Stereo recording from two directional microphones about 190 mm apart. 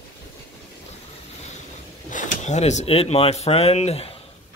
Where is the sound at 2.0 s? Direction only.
40° left (ahead or behind).